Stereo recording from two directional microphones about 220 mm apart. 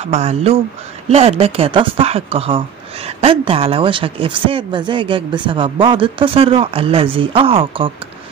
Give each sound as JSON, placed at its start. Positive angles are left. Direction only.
{"t": 0.0, "sound": "speech", "side_deg": -30}